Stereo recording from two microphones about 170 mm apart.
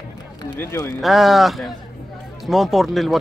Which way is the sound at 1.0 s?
Centre (ahead or behind).